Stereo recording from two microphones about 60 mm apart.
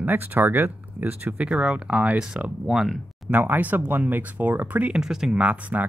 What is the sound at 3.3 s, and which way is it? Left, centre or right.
Speech, right.